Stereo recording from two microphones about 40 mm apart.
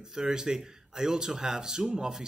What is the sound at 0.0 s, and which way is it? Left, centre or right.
A man's voice, centre.